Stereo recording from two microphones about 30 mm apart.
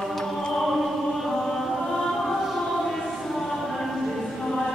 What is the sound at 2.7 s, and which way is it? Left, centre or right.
Music, centre.